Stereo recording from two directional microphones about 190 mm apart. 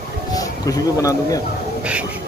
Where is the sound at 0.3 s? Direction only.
20° left (ahead or behind).